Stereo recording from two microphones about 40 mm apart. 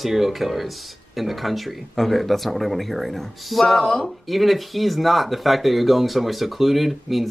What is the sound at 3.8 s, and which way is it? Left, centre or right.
Speech, left.